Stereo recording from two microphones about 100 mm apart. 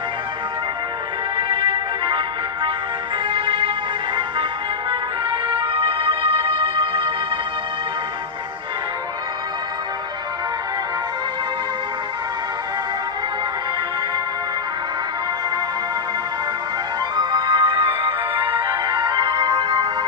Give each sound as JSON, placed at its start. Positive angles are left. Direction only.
{"t": 1.5, "sound": "music", "side_deg": -60}
{"t": 5.5, "sound": "music", "side_deg": -65}
{"t": 17.2, "sound": "music", "side_deg": -45}